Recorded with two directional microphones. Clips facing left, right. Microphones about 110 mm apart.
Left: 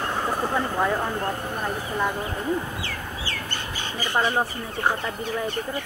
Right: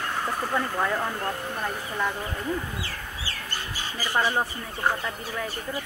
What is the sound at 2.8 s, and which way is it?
Chicken, 5° right (ahead or behind).